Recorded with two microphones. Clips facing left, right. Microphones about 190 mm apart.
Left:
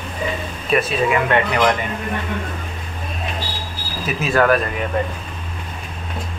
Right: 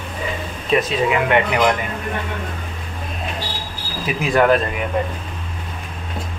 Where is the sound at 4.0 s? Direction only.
15° right (ahead or behind).